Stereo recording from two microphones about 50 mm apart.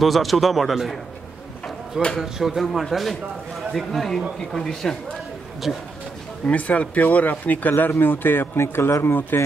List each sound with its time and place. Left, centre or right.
0.0 s speech: centre
2.1 s speech: centre
6.4 s speech: left